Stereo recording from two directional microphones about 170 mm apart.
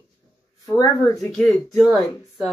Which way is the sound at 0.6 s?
20° left (ahead or behind).